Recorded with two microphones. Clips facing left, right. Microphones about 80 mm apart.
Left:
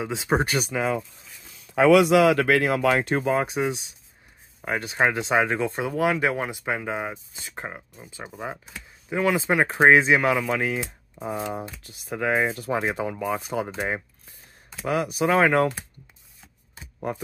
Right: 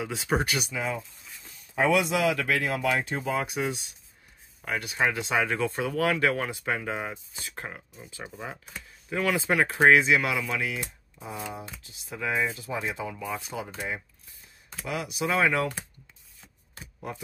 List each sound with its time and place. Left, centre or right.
0.0 s speech: left
0.7 s speech: left
1.7 s speech: left
3.3 s speech: left
11.8 s speech: left
13.5 s speech: left
14.9 s speech: left